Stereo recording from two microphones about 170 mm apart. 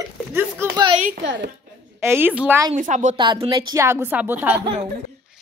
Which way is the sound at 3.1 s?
30° right (ahead or behind).